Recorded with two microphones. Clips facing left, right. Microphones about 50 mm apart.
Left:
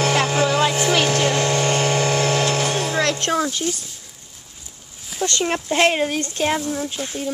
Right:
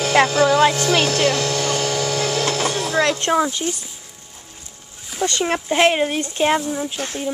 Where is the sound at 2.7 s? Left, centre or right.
Left.